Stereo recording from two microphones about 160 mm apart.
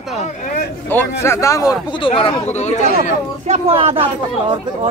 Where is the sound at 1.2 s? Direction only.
20° left (ahead or behind).